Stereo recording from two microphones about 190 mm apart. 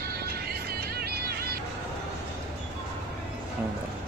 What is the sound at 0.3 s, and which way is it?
Music, 55° right (ahead or behind).